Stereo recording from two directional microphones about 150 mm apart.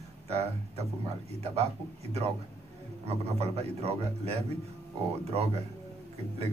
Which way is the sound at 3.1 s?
45° right (ahead or behind).